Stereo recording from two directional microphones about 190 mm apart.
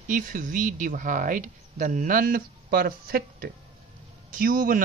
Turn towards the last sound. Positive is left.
turn(degrees=-45)  # may be behind; listen again after turning